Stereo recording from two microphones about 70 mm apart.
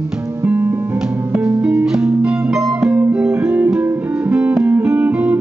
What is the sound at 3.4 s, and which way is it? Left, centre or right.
Music, right.